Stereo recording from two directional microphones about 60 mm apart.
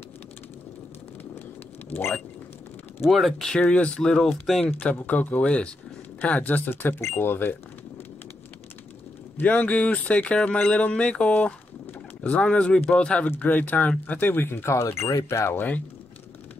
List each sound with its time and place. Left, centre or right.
3.0 s speech: centre
3.6 s speech: centre
4.9 s speech: left
9.4 s speech: left
13.3 s speech: left